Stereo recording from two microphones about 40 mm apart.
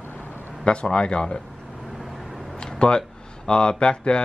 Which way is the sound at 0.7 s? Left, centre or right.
Left.